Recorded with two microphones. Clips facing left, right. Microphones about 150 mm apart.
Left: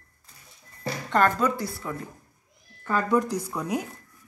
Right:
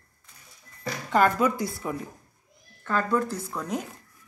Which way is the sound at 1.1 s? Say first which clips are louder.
Right 1 dB; 5° right (ahead or behind).